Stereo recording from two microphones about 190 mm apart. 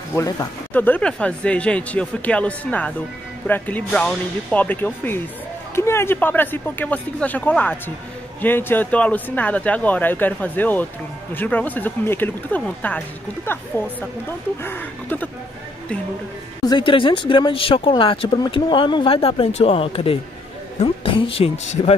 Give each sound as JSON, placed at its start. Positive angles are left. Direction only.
{"t": 0.1, "sound": "speech", "side_deg": 15}
{"t": 16.6, "sound": "speech", "side_deg": 25}